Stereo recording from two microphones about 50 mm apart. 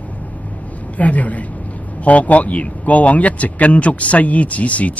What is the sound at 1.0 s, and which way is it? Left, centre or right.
A man's voice, left.